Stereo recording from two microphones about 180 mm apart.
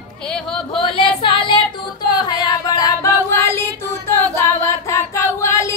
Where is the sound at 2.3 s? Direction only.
20° left (ahead or behind).